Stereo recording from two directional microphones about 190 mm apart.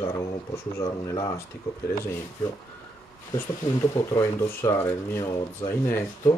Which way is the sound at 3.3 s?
15° left (ahead or behind).